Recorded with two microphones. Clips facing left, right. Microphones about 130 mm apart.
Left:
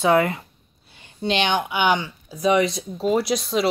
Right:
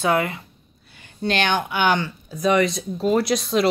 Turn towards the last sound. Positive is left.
turn(degrees=5)  # may be behind; listen again after turning